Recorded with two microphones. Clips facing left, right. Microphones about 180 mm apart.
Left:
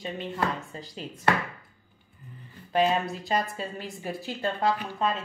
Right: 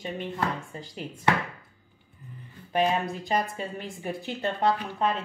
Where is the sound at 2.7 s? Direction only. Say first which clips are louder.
Left 1 dB; 15° right (ahead or behind).